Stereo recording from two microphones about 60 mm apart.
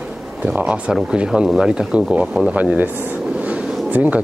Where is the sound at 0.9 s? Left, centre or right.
Centre.